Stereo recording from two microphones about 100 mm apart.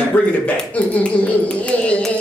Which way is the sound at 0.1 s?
15° left (ahead or behind).